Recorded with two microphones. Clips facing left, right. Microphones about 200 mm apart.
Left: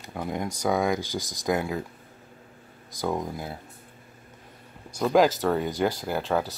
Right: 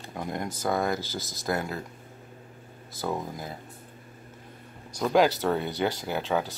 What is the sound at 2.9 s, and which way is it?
Speech, 15° left (ahead or behind).